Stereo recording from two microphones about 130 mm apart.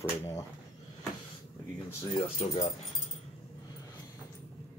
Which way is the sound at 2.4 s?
65° left (ahead or behind).